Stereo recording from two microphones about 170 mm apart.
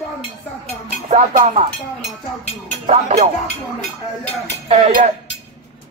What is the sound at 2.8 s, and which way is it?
Music, 45° right (ahead or behind).